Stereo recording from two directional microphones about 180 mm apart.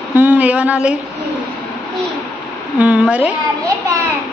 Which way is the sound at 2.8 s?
10° right (ahead or behind).